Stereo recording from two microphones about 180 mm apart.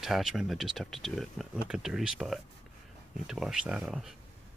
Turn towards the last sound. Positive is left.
turn(degrees=-5)  # may be behind; listen again after turning